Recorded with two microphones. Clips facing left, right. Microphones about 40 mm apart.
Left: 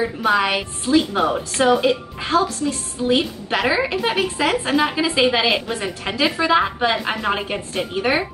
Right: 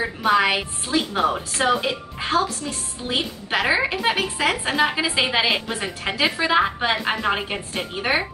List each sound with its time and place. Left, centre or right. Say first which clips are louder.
0.2 s a woman's voice: right 1 dB; centre